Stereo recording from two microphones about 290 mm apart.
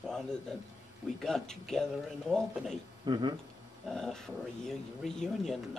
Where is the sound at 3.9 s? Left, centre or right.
Centre.